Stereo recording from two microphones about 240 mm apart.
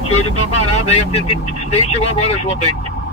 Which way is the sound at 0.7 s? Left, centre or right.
Left.